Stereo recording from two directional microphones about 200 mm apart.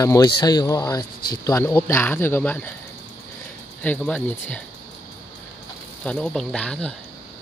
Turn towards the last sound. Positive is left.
turn(degrees=5)  # may be behind; listen again after turning